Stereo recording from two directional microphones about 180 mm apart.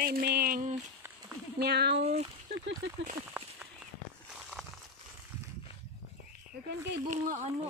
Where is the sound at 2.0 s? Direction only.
35° right (ahead or behind).